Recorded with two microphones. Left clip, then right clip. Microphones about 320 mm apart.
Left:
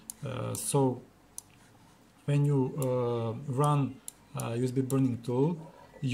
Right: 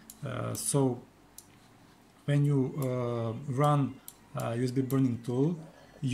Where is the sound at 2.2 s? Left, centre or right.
Centre.